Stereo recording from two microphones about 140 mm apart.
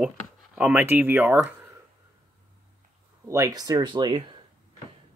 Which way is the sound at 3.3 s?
25° right (ahead or behind).